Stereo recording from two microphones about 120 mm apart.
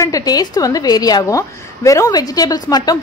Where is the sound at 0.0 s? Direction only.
30° left (ahead or behind).